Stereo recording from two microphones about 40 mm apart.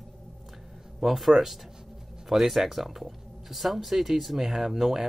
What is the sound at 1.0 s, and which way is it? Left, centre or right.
A man's voice, centre.